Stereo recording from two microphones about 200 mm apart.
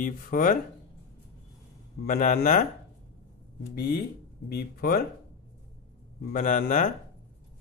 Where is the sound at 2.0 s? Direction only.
45° left (ahead or behind).